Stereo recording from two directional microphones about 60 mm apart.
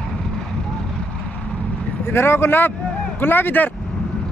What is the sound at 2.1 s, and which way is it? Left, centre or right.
Speech, left.